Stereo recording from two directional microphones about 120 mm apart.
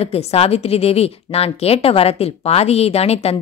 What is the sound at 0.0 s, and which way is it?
Speech, 60° left (ahead or behind).